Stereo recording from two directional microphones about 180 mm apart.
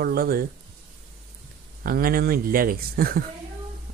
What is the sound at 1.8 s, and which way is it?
Speech, 55° right (ahead or behind).